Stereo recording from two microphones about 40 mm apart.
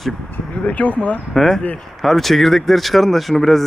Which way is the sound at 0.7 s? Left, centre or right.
Left.